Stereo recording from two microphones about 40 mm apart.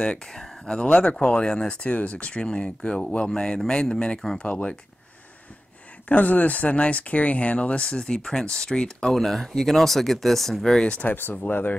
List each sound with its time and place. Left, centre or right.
0.0 s speech: centre
1.8 s speech: left
3.3 s speech: centre
4.4 s speech: left
6.0 s speech: left; by 9.1 s centre
9.1 s speech: centre
11.1 s speech: left
11.3 s speech: left